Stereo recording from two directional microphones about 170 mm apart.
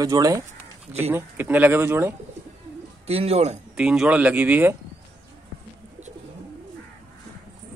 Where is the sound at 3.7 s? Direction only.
5° right (ahead or behind).